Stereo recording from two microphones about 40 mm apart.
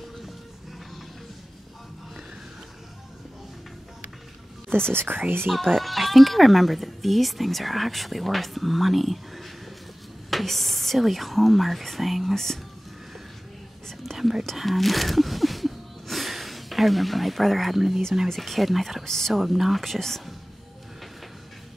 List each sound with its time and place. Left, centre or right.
4.9 s a woman's voice: right
5.5 s speech: centre
14.0 s whispering: centre
14.6 s a sound: centre
17.7 s speech: centre
18.3 s speech: centre
19.0 s speech: centre
19.3 s speech: centre